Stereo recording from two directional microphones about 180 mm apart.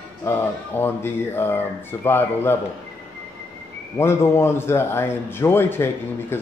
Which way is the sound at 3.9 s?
15° left (ahead or behind).